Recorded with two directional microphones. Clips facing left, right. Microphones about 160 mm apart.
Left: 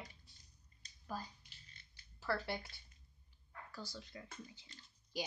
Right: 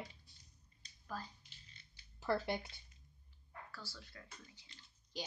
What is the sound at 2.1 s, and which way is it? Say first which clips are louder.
Speech: right 3 dB; 20° right (ahead or behind).